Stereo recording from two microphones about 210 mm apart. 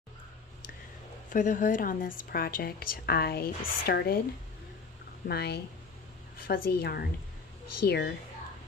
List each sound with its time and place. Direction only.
1.3 s a woman's voice: 40° left (ahead or behind)
5.3 s a woman's voice: 50° left (ahead or behind)